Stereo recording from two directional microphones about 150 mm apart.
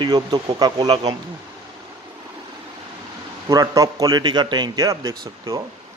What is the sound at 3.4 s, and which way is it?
A man's voice, 25° right (ahead or behind).